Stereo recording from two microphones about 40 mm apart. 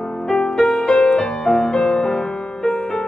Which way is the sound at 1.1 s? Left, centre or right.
Centre.